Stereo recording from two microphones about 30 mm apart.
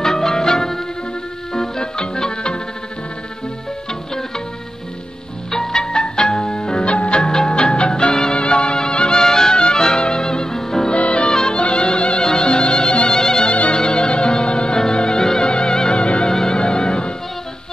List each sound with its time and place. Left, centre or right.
0.0 s music: centre
5.5 s music: centre
6.9 s music: left
7.2 s music: left
10.9 s music: left
11.2 s music: centre
11.5 s music: left
13.2 s music: left
13.5 s music: left
16.3 s music: centre
16.5 s music: left